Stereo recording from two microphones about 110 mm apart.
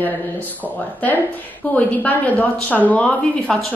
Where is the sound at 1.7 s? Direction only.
15° left (ahead or behind).